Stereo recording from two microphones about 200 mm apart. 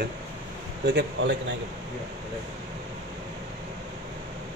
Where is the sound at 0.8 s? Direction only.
60° right (ahead or behind).